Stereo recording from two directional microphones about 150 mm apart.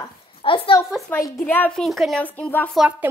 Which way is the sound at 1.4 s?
10° left (ahead or behind).